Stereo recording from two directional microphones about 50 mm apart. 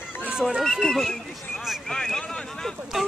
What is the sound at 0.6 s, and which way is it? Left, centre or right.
Speech, centre.